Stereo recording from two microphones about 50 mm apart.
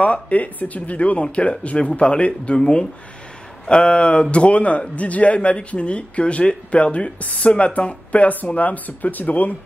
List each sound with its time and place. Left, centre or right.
0.0 s speech: left